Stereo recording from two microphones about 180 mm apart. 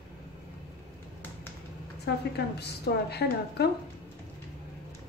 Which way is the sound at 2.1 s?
65° left (ahead or behind).